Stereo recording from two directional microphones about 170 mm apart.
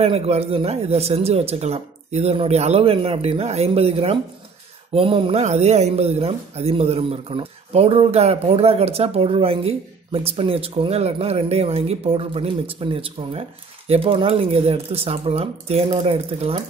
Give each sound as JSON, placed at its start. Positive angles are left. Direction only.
{"t": 0.0, "sound": "speech", "side_deg": -35}